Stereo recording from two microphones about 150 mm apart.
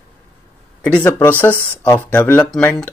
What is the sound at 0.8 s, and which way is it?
Speech, 10° left (ahead or behind).